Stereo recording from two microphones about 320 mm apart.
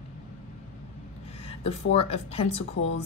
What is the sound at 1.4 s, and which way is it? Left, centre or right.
Speech, centre.